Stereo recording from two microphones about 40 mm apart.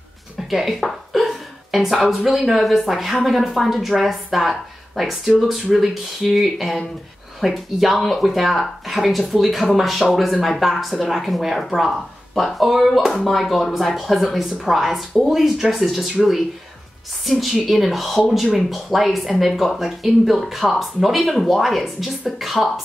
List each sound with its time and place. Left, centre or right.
0.5 s a woman's voice: centre